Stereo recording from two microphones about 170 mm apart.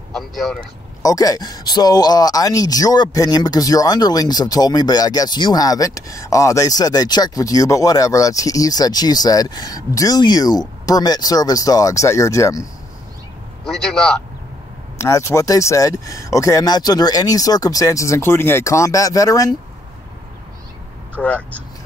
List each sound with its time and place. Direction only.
0.1 s speech: centre (ahead or behind)
1.0 s speech: 20° left (ahead or behind)
13.7 s speech: 5° left (ahead or behind)
15.0 s speech: 15° left (ahead or behind)
21.2 s speech: 10° left (ahead or behind)